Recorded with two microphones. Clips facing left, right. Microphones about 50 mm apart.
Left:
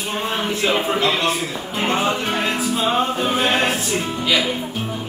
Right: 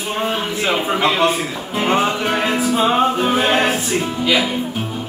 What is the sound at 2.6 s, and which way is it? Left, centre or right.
A man's voice, right.